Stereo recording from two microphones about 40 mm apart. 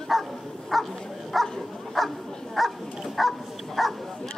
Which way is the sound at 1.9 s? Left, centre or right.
Centre.